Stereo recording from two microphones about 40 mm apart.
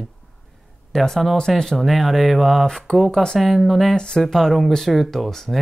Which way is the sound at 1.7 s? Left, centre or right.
Centre.